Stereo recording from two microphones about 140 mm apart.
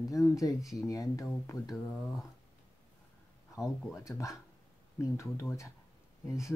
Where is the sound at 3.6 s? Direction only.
Centre (ahead or behind).